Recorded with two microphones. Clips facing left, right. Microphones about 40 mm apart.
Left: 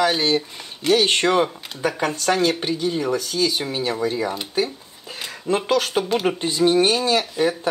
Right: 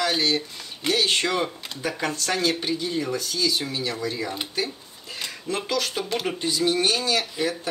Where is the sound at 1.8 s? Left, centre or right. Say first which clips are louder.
Left 6 dB; centre.